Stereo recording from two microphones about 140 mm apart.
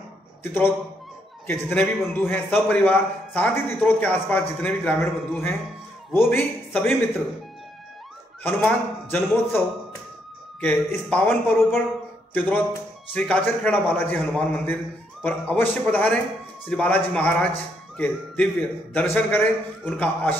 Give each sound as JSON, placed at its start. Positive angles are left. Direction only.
{"t": 0.4, "sound": "a man's voice", "side_deg": 15}
{"t": 8.5, "sound": "a man's voice", "side_deg": 10}
{"t": 10.6, "sound": "a man's voice", "side_deg": 10}